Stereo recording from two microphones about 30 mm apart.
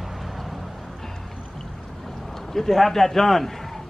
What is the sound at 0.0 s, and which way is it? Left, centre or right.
Vehicle, centre.